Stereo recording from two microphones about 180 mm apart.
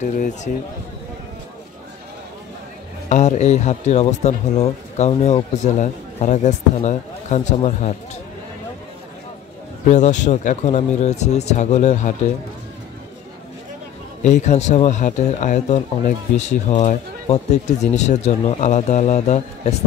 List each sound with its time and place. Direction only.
0.0 s speech: 40° left (ahead or behind)
3.1 s speech: 40° left (ahead or behind)
9.8 s speech: 40° left (ahead or behind)
14.2 s speech: 40° left (ahead or behind)